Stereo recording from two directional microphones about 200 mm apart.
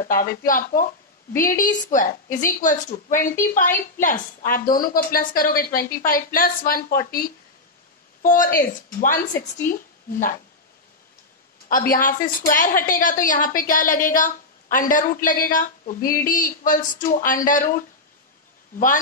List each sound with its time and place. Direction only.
0.0 s a woman's voice: 45° left (ahead or behind)
11.7 s a woman's voice: 45° left (ahead or behind)